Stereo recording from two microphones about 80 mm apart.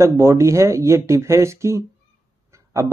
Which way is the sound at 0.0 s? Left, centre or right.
Right.